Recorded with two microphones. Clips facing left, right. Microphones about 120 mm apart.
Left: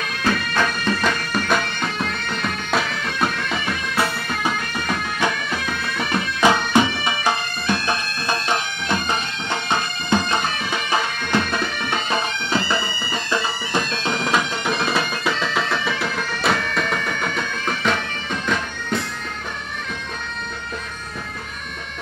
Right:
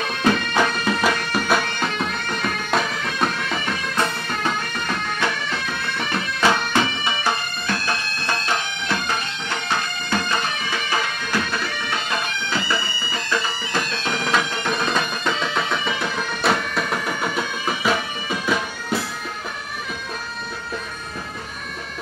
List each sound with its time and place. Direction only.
0.2 s music: 10° right (ahead or behind)
2.7 s bagpipes: 5° left (ahead or behind)
15.3 s music: 5° right (ahead or behind)